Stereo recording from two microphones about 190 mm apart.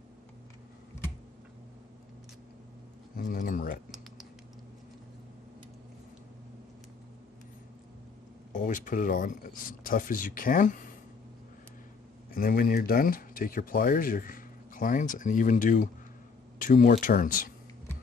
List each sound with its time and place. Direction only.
3.2 s a sound: 45° left (ahead or behind)
8.5 s speech: 45° left (ahead or behind)
12.4 s speech: 50° left (ahead or behind)